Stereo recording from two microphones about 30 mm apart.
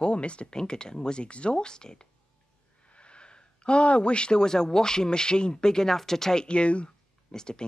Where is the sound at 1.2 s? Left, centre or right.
Left.